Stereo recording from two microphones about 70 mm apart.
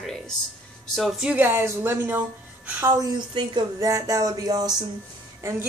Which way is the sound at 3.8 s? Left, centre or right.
Right.